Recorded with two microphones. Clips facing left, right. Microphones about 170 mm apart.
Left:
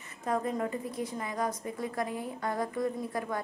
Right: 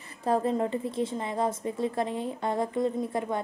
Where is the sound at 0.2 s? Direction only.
30° right (ahead or behind).